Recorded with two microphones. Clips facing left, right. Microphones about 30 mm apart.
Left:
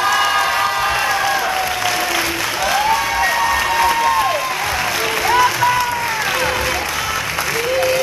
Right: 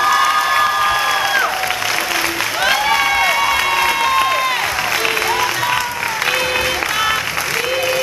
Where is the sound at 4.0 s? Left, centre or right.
Right.